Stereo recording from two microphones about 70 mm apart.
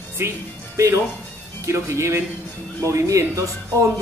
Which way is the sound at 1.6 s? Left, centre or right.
Right.